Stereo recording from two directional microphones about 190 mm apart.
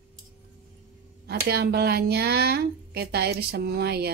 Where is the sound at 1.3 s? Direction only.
55° right (ahead or behind).